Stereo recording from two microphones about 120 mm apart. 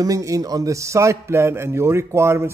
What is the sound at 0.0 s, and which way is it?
A man's voice, 30° right (ahead or behind).